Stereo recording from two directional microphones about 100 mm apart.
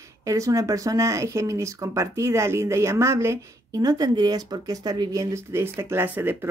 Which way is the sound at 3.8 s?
40° right (ahead or behind).